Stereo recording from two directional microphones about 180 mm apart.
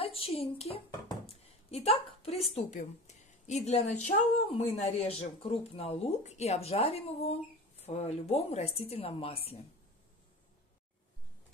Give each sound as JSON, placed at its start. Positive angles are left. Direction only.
{"t": 0.0, "sound": "a woman's voice", "side_deg": 30}